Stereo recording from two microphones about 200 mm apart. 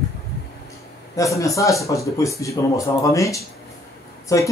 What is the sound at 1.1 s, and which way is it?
Speech, 15° left (ahead or behind).